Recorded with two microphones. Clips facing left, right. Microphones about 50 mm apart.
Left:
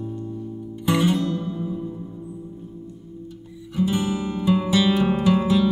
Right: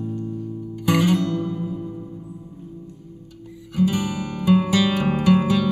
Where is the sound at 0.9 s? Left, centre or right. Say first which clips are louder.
Right 1 dB; right.